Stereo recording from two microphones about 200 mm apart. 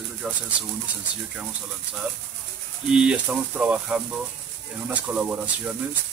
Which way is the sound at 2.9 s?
5° right (ahead or behind).